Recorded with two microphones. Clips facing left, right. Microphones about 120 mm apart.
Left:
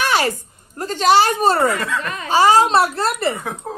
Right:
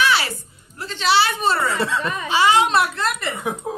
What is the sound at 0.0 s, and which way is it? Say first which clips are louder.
A woman's voice: left 2 dB; 45° left (ahead or behind).